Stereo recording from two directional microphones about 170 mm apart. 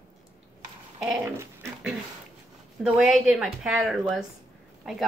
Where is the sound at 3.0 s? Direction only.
Centre (ahead or behind).